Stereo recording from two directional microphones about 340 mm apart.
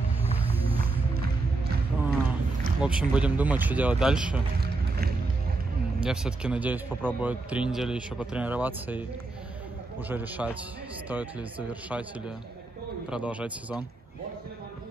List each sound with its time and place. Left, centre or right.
2.8 s a man's voice: centre
4.6 s music: right
6.0 s a man's voice: centre
10.0 s a man's voice: centre
13.1 s a man's voice: centre